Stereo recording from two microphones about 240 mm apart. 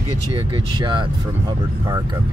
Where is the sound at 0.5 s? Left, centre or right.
Centre.